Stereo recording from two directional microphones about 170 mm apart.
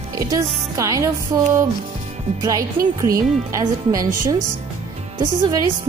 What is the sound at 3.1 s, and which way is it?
Speech, 20° right (ahead or behind).